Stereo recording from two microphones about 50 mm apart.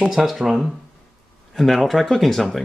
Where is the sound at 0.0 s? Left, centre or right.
Centre.